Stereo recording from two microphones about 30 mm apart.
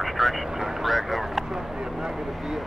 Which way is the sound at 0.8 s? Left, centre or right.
Centre.